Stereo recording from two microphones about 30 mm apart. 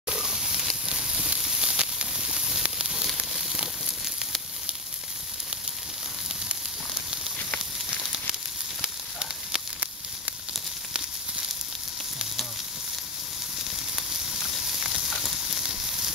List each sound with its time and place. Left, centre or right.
0.1 s a sound: right
0.8 s sizzle: right
8.8 s sizzle: right
15.0 s sizzle: centre
15.4 s sizzle: centre